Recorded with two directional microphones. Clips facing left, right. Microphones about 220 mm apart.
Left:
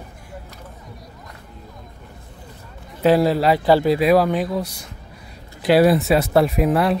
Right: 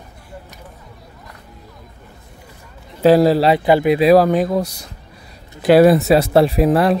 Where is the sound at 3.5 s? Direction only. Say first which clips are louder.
Right 2 dB; 15° right (ahead or behind).